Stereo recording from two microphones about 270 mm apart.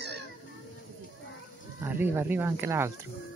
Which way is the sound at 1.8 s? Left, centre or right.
Centre.